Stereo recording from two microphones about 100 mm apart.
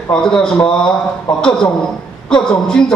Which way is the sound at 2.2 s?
5° left (ahead or behind).